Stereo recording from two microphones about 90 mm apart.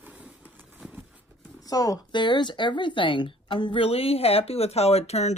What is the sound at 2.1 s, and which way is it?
A woman's voice, 60° left (ahead or behind).